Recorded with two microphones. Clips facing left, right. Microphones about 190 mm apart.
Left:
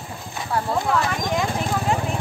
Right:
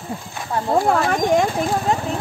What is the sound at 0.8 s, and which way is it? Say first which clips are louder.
Speech: right 5 dB; 45° right (ahead or behind).